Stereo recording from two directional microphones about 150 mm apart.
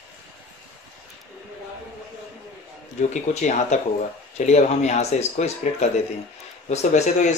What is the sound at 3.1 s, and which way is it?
Speech, 55° left (ahead or behind).